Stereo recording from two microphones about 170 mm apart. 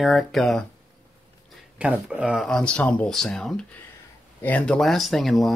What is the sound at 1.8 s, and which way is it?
Speech, 5° right (ahead or behind).